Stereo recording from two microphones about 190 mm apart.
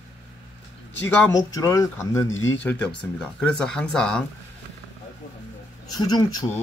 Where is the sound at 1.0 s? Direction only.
10° left (ahead or behind).